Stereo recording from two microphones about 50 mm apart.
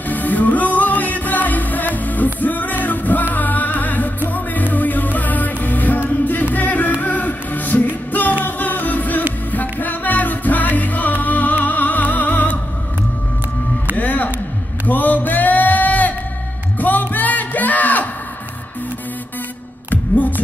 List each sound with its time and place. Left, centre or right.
0.1 s music: left
13.9 s music: left
14.9 s a sound: left
16.8 s music: left
19.9 s music: left